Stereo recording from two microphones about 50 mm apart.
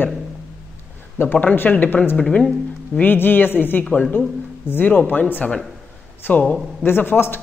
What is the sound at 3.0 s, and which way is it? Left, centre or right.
A woman's voice, left.